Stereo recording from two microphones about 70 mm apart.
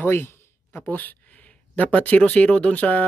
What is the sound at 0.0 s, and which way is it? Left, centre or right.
Speech, left.